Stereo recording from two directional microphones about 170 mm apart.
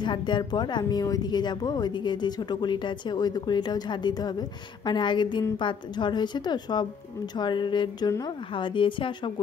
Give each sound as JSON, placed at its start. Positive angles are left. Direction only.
{"t": 0.0, "sound": "speech", "side_deg": 25}